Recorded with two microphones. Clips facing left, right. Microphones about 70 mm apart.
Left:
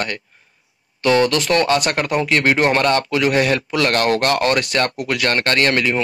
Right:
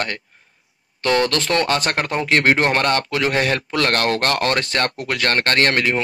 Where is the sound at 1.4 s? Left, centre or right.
Right.